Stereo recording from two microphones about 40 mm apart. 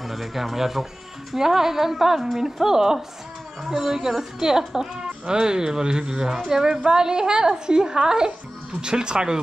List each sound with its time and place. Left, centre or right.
0.0 s speech: centre